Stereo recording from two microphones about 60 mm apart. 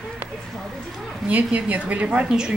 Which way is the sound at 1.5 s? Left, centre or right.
Right.